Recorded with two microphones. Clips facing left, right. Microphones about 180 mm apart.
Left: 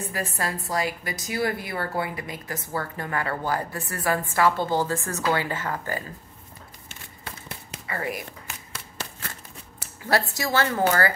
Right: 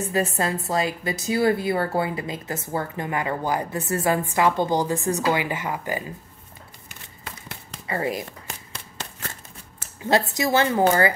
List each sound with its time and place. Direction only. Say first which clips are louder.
0.1 s a woman's voice: right 8 dB; 25° right (ahead or behind)
7.8 s shuffling cards: right 5 dB; 25° right (ahead or behind)
10.0 s a woman's voice: right 4 dB; 20° right (ahead or behind)